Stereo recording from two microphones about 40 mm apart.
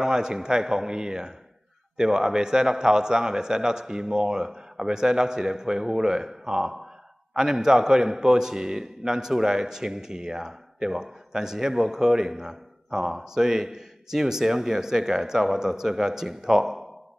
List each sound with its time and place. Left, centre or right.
0.0 s a man's voice: centre